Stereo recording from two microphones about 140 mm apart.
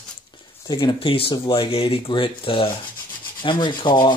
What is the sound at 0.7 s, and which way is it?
Speech, 35° left (ahead or behind).